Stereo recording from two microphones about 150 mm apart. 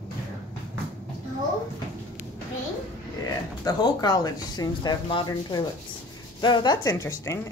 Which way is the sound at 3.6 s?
30° left (ahead or behind).